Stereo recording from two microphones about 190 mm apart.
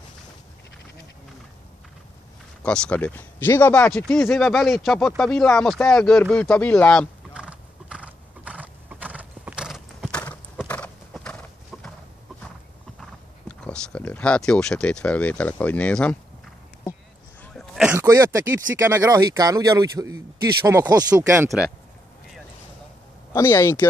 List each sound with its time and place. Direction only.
2.6 s speech: 5° left (ahead or behind)
7.4 s horse: 5° right (ahead or behind)
13.5 s speech: 10° left (ahead or behind)
17.4 s throat clearing: centre (ahead or behind)
17.9 s speech: 15° right (ahead or behind)
23.3 s speech: 15° left (ahead or behind)